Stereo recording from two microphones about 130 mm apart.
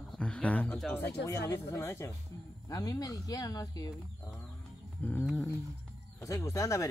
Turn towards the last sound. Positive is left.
turn(degrees=25)  # may be behind; listen again after turning